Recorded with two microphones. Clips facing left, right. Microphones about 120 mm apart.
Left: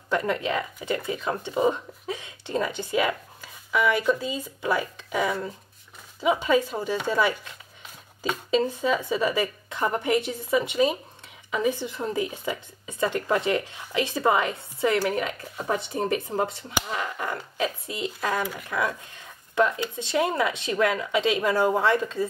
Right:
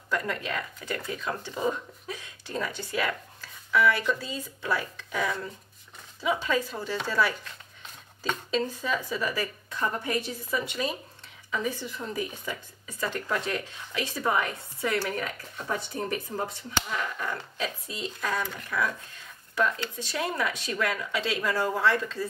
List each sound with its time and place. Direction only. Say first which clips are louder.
0.1 s speech: left 5 dB; 20° left (ahead or behind)
1.3 s speech: left 6 dB; 25° left (ahead or behind)
17.2 s speech: left 4 dB; 15° left (ahead or behind)